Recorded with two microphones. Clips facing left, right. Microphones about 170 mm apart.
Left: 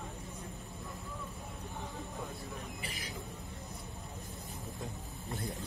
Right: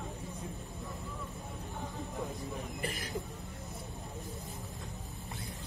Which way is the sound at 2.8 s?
45° right (ahead or behind).